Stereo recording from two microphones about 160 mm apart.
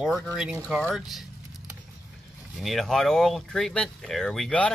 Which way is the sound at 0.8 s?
Centre (ahead or behind).